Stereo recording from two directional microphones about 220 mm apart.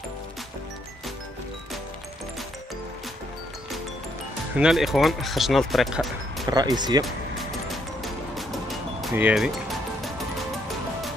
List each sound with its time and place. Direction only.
4.6 s speech: centre (ahead or behind)
6.4 s speech: 20° right (ahead or behind)
7.1 s music: centre (ahead or behind)